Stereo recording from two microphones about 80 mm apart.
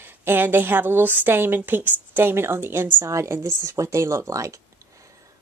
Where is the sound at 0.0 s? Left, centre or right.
Right.